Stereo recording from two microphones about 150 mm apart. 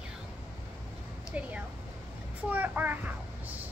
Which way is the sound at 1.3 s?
10° right (ahead or behind).